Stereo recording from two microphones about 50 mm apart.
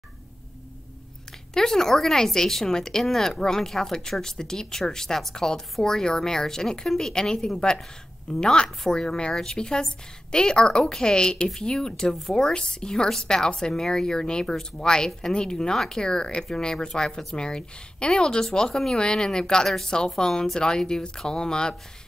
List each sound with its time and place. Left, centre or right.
1.5 s speech: centre